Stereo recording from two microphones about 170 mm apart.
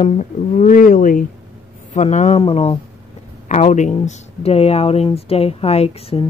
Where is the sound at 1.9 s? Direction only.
45° left (ahead or behind).